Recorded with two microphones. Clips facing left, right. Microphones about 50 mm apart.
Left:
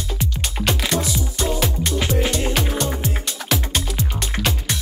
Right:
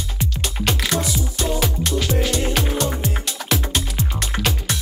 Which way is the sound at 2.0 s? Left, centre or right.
Left.